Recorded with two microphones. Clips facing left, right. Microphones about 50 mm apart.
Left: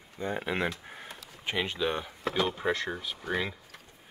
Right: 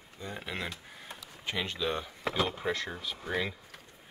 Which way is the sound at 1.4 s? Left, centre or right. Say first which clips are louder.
Left 3 dB; centre.